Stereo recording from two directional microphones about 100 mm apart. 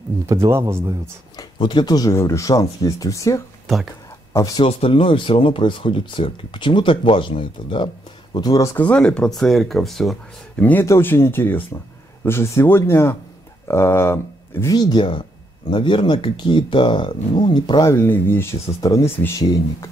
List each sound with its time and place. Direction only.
0.5 s speech: 25° right (ahead or behind)
1.6 s speech: 50° left (ahead or behind)
2.1 s speech: 30° left (ahead or behind)
3.6 s speech: centre (ahead or behind)
4.3 s speech: 40° left (ahead or behind)
4.6 s speech: 75° left (ahead or behind); by 8.7 s 40° left (ahead or behind)
8.7 s speech: 15° left (ahead or behind)
10.6 s speech: 20° left (ahead or behind)
14.7 s speech: 45° left (ahead or behind)
17.9 s speech: 20° left (ahead or behind)